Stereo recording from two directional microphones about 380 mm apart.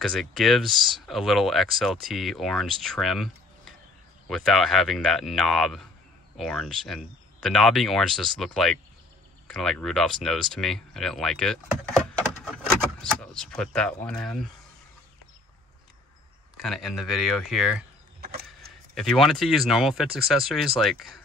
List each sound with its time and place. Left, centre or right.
0.0 s speech: centre
16.6 s speech: centre
18.2 s vehicle: right
18.9 s speech: centre